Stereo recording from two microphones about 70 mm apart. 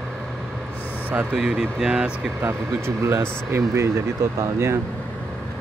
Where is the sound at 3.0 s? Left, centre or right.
Right.